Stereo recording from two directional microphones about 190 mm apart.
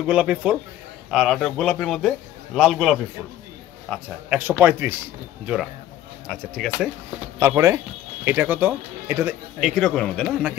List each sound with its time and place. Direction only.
0.0 s a man's voice: 5° right (ahead or behind)
6.2 s a man's voice: 5° left (ahead or behind)
7.3 s speech: 15° right (ahead or behind)
9.6 s a man's voice: centre (ahead or behind)